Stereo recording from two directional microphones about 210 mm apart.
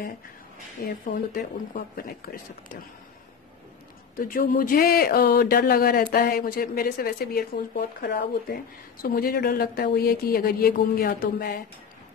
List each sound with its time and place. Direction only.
0.8 s speech: 45° left (ahead or behind)
4.2 s speech: 45° left (ahead or behind)